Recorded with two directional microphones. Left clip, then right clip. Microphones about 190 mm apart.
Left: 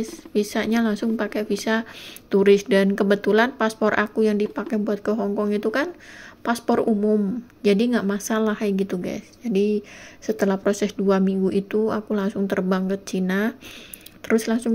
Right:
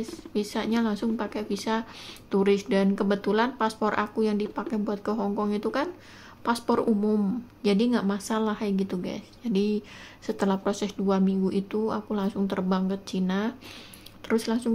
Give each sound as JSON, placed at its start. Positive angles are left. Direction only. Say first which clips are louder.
{"t": 0.0, "sound": "speech", "louder": "left 6 dB", "side_deg": 15}